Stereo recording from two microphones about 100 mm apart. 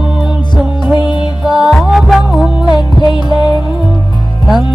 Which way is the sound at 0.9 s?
50° left (ahead or behind).